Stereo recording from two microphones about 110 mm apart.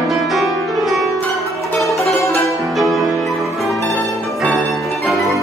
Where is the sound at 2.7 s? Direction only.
Centre (ahead or behind).